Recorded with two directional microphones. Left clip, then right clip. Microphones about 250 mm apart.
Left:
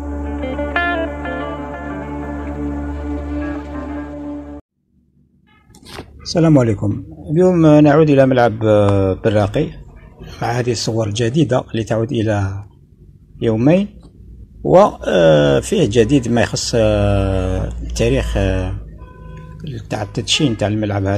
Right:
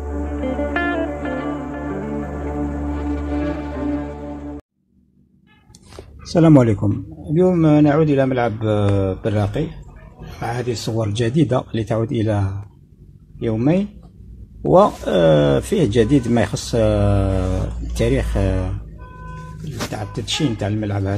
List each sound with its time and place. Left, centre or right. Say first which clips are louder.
0.0 s music: left 1 dB; centre
6.3 s a man's voice: even; right
7.4 s speech: left 5 dB; centre
11.0 s speech: even; centre
13.4 s speech: left 5 dB; centre
14.6 s speech: left 3 dB; centre
19.6 s speech: left 3 dB; centre